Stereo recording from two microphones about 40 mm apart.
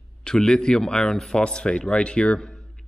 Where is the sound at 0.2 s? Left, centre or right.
Left.